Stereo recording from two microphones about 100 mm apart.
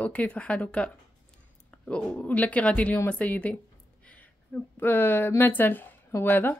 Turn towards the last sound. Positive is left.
turn(degrees=25)  # may be behind; listen again after turning